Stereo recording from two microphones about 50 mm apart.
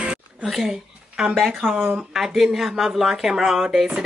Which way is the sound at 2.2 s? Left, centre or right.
Centre.